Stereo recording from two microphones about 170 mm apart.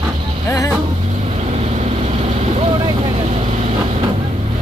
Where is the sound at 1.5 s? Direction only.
40° right (ahead or behind).